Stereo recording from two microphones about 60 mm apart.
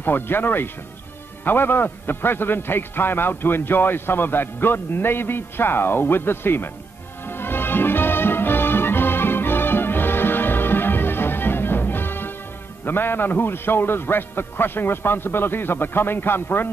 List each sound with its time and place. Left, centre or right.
0.0 s a man's voice: left
7.2 s music: left
12.8 s a man's voice: left